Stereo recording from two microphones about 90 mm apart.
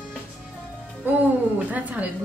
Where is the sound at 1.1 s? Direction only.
20° right (ahead or behind).